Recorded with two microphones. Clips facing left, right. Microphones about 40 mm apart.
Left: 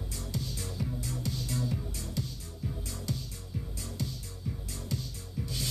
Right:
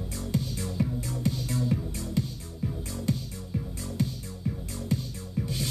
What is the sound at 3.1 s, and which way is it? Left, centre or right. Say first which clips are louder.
Music: right 9 dB; right.